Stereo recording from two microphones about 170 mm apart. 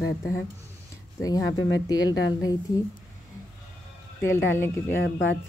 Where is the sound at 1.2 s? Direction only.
20° left (ahead or behind).